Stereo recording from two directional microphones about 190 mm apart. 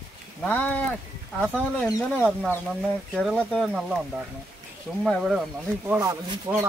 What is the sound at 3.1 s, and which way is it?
Speech, centre (ahead or behind).